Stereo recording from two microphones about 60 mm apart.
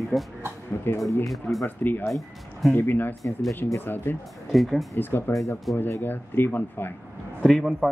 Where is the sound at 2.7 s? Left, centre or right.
Left.